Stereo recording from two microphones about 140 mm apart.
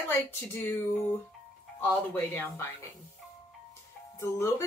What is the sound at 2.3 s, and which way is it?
Speech, 15° left (ahead or behind).